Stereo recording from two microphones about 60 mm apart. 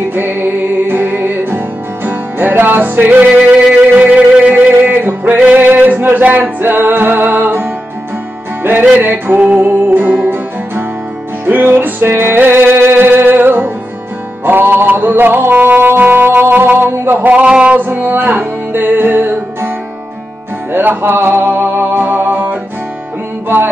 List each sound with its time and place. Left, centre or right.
0.1 s music: right
8.9 s music: right
11.4 s music: right
16.9 s a sound: right; by 17.7 s centre
17.7 s music: right
20.7 s music: right